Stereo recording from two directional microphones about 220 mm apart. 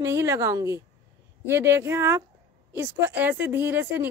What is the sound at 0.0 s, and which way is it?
A woman's voice, 10° right (ahead or behind).